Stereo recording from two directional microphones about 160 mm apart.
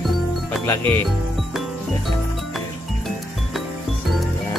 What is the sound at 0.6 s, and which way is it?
Speech, 15° left (ahead or behind).